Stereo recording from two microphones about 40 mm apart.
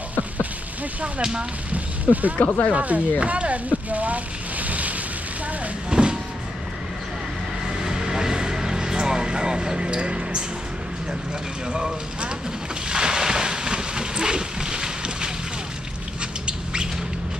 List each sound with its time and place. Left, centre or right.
2.3 s speech: left
2.7 s speech: right
5.9 s speech: right
7.8 s a sound: centre
11.7 s speech: right
12.9 s boat: centre
16.4 s squawk: right